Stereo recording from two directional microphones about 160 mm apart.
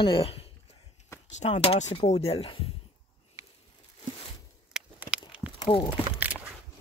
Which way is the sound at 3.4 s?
20° right (ahead or behind).